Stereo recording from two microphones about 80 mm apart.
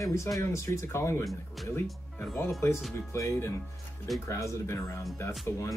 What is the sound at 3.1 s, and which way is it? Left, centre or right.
Speech, left.